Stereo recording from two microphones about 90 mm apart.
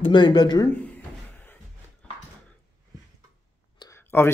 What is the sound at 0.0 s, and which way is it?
Speech, 60° left (ahead or behind).